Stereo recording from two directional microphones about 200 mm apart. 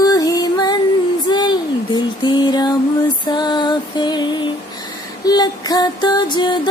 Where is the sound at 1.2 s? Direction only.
20° left (ahead or behind).